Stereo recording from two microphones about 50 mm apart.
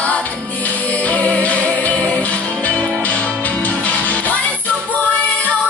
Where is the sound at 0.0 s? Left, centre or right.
Left.